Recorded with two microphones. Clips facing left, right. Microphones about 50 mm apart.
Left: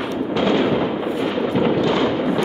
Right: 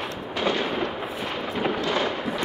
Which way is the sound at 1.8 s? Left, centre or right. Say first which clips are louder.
Left 7 dB; centre.